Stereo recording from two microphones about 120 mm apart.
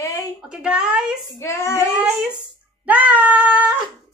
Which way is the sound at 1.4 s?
25° left (ahead or behind).